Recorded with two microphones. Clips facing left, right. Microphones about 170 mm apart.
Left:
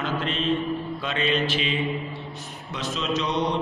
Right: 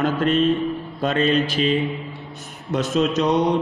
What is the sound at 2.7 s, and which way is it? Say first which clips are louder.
Speech: right 8 dB; 50° right (ahead or behind).